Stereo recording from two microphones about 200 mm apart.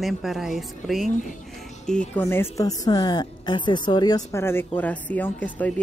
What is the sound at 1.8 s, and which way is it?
Speech, 5° left (ahead or behind).